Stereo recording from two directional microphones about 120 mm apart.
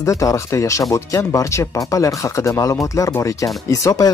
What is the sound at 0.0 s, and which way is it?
Speech, 25° left (ahead or behind).